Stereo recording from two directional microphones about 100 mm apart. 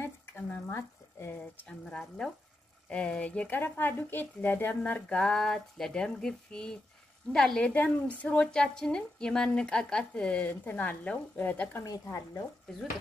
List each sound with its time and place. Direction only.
0.0 s a sound: 20° left (ahead or behind)
1.7 s a woman's voice: 10° left (ahead or behind)
11.8 s speech: 35° left (ahead or behind)